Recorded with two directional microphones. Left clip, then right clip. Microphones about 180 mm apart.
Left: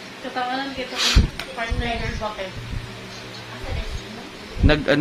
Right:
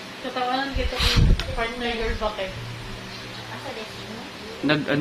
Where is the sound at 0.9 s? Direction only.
30° left (ahead or behind).